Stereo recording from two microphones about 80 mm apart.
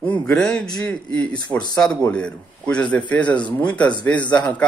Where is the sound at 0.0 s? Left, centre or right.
Centre.